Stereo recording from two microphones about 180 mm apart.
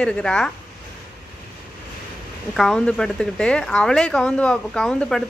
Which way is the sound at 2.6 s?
5° left (ahead or behind).